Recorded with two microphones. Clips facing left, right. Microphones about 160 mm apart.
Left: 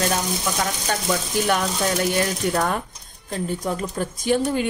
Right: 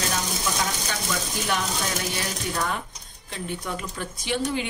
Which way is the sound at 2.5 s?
50° left (ahead or behind).